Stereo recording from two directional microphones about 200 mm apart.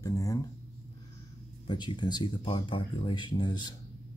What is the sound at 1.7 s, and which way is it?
Speech, 20° left (ahead or behind).